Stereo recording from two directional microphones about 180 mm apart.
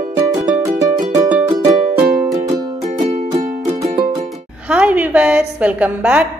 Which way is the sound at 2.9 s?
40° right (ahead or behind).